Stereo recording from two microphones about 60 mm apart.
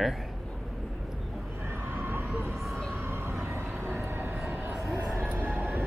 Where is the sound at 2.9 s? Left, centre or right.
Right.